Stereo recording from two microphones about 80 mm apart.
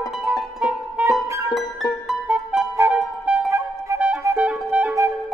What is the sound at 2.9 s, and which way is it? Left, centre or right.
Music, centre.